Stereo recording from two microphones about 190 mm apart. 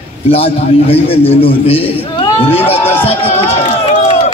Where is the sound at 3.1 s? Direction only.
30° left (ahead or behind).